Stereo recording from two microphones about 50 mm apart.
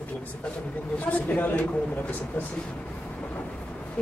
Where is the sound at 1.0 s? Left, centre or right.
Left.